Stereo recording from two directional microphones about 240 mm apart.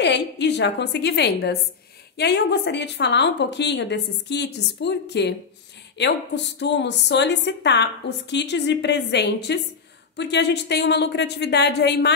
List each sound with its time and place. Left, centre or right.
0.0 s a woman's voice: left